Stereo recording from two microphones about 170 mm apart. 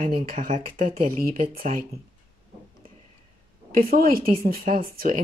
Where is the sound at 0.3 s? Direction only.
55° right (ahead or behind).